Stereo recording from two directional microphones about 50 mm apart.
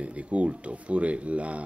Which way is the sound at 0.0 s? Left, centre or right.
Right.